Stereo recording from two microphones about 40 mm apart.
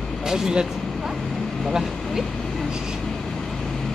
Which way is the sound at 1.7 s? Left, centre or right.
Centre.